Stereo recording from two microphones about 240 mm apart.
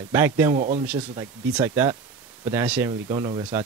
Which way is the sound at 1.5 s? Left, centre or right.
Centre.